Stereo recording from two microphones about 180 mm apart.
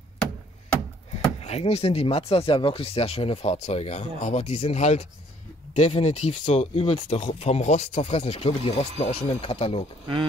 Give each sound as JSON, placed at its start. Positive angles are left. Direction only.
{"t": 1.4, "sound": "speech", "side_deg": 35}